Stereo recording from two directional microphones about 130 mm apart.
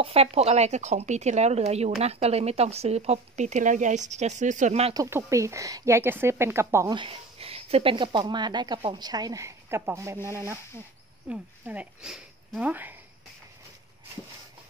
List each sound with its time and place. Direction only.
0.0 s speech: 50° right (ahead or behind)
5.1 s speech: 20° right (ahead or behind)
6.9 s speech: 40° right (ahead or behind); by 12.9 s 10° right (ahead or behind)